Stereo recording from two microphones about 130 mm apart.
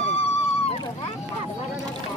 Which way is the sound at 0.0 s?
50° left (ahead or behind).